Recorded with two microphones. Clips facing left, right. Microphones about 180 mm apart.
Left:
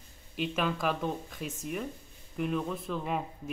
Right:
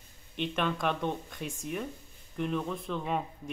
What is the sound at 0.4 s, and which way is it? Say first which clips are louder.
Speech: even; 5° left (ahead or behind).